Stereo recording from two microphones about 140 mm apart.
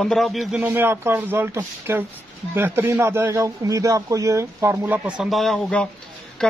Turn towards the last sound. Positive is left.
turn(degrees=5)  # may be behind; listen again after turning